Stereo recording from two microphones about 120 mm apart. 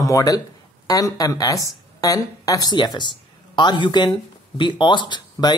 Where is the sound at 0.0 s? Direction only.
30° left (ahead or behind).